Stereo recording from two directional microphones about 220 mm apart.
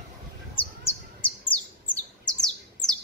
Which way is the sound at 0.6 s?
25° left (ahead or behind).